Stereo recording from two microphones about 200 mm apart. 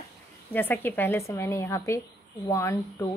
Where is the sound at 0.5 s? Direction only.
10° left (ahead or behind).